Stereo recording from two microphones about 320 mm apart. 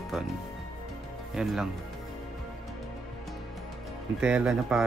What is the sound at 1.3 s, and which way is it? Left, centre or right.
Speech, centre.